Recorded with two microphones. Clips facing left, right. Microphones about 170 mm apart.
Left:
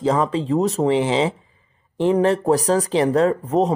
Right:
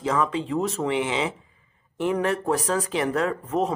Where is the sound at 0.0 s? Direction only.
35° left (ahead or behind).